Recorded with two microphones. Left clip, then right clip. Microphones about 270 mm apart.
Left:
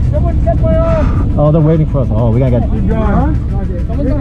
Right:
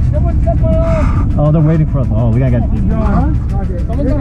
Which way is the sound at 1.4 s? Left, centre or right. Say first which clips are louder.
Left 4 dB; left.